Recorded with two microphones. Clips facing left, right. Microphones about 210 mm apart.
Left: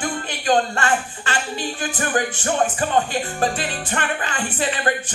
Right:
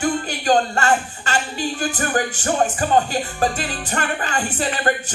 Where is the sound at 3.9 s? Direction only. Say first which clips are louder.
Right 4 dB; 40° right (ahead or behind).